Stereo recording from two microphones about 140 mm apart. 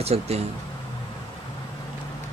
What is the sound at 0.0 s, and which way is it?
Speech, 45° right (ahead or behind).